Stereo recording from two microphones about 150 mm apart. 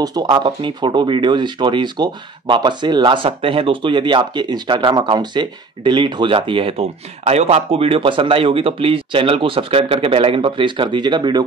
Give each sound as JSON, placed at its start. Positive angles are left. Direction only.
{"t": 0.0, "sound": "speech", "side_deg": -25}